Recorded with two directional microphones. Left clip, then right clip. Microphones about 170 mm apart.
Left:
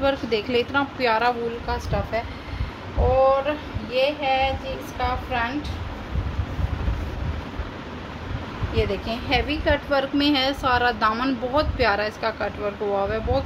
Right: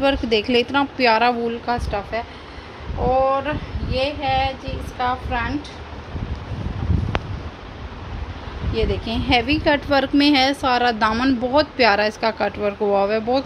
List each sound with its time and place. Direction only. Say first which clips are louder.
0.0 s a woman's voice: right 4 dB; 35° right (ahead or behind)
8.7 s a woman's voice: right 2 dB; 50° right (ahead or behind); by 11.6 s 35° right (ahead or behind)
11.8 s a woman's voice: right 5 dB; 50° right (ahead or behind)